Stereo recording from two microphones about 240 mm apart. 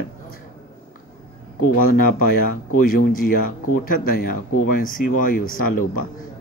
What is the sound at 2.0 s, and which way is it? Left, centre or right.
Speech, left.